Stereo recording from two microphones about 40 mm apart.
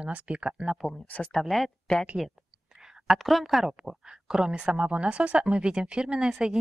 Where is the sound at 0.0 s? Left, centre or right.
Right.